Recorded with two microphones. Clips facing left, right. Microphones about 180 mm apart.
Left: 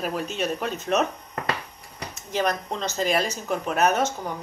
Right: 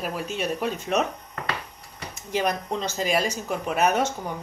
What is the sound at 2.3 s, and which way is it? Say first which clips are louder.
Speech: even; 10° right (ahead or behind).